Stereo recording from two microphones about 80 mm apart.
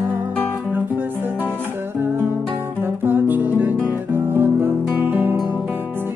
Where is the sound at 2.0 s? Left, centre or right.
Right.